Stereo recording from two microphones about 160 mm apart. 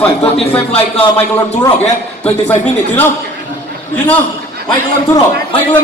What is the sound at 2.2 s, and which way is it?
Speech, 10° left (ahead or behind).